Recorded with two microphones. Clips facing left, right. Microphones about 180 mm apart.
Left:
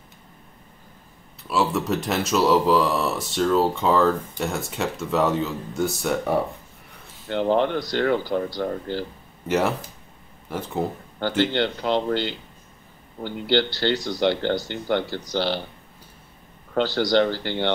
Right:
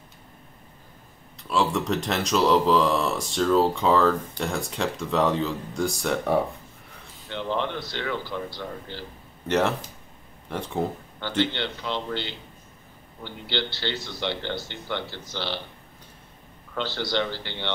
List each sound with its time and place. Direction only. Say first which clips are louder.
1.5 s speech: left 1 dB; 5° left (ahead or behind)
7.2 s speech: left 8 dB; 45° left (ahead or behind)
9.5 s speech: left 1 dB; 5° left (ahead or behind)
11.5 s speech: left 8 dB; 45° left (ahead or behind)
16.7 s speech: left 8 dB; 40° left (ahead or behind)